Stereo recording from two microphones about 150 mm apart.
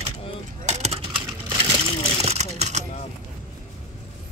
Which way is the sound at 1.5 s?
35° right (ahead or behind).